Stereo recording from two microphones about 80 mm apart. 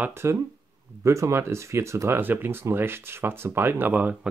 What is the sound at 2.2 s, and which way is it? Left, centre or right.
Speech, right.